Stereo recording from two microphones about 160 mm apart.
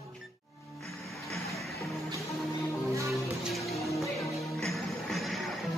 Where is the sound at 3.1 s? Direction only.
Centre (ahead or behind).